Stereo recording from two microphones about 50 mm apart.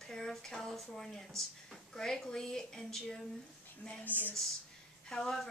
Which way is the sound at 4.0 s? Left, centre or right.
Left.